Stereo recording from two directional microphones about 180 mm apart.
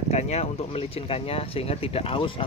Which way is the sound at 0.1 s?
40° left (ahead or behind).